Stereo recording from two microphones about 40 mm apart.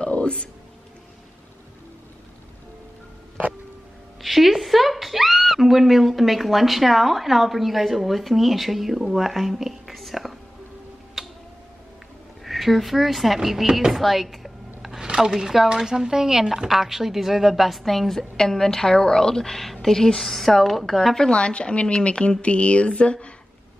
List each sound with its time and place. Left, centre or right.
0.0 s a sound: left
4.2 s speech: centre
11.2 s tick-tock: centre
12.4 s speech: centre
14.0 s a sound: centre
15.0 s a woman's voice: centre
21.3 s speech: left